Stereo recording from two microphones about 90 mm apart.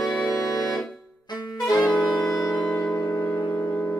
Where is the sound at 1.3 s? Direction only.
50° left (ahead or behind).